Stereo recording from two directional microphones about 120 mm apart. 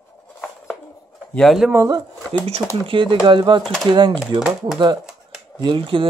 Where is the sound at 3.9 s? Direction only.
40° right (ahead or behind).